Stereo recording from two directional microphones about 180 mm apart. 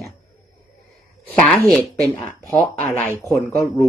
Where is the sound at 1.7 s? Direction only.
5° left (ahead or behind).